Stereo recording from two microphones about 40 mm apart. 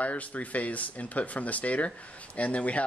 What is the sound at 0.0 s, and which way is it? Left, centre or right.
Speech, left.